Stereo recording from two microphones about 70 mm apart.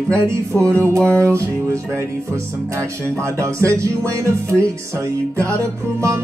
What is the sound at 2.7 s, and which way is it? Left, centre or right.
Music, right.